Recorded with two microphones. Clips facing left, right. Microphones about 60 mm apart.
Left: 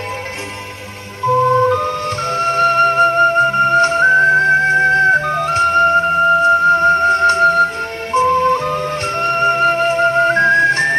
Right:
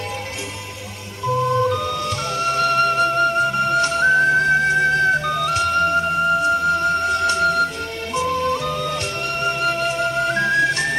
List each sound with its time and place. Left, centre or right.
1.2 s music: left